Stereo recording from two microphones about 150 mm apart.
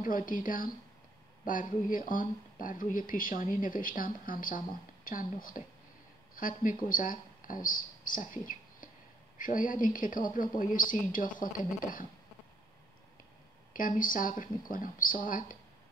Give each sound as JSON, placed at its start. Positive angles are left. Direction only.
{"t": 0.0, "sound": "speech", "side_deg": 65}
{"t": 13.7, "sound": "speech", "side_deg": 65}